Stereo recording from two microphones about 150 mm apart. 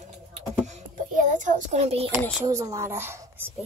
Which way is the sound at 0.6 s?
55° right (ahead or behind).